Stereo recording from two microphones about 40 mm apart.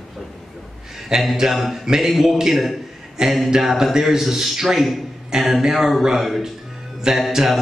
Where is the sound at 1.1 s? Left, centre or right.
Centre.